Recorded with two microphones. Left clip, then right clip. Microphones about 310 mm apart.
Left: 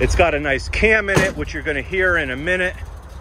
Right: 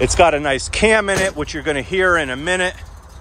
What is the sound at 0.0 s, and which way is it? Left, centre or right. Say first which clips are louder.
Speech: right 3 dB; centre.